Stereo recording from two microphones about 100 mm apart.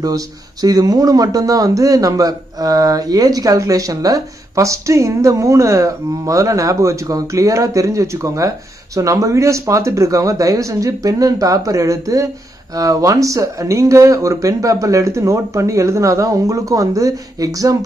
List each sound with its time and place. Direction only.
0.0 s speech: 40° right (ahead or behind)